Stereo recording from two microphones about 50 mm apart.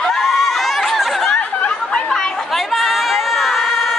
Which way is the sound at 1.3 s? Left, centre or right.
Left.